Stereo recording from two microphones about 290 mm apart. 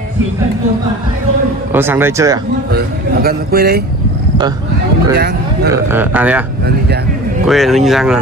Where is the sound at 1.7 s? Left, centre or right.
Centre.